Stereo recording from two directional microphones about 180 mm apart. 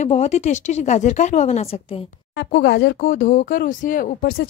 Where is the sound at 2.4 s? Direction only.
65° left (ahead or behind).